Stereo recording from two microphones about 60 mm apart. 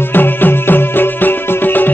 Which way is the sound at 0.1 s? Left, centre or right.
Left.